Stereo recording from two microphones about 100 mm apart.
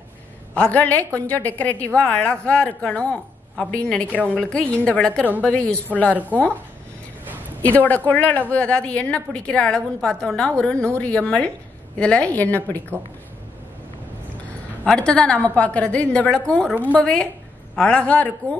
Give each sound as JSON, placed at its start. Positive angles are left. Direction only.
{"t": 0.6, "sound": "a woman's voice", "side_deg": 15}
{"t": 7.6, "sound": "a woman's voice", "side_deg": 15}
{"t": 14.9, "sound": "a woman's voice", "side_deg": 10}